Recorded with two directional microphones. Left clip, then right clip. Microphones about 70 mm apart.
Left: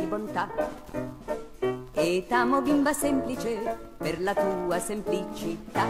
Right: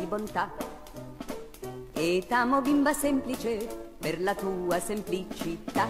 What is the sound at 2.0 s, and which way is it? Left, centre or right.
Music, left.